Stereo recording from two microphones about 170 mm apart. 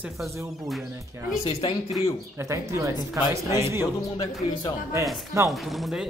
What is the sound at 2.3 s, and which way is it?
Speech, 15° right (ahead or behind).